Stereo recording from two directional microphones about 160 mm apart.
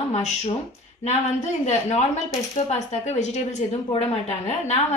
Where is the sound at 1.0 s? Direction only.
45° left (ahead or behind).